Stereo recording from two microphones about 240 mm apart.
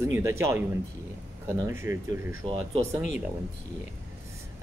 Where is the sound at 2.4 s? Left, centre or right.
Right.